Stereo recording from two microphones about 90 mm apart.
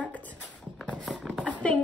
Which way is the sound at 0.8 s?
10° left (ahead or behind).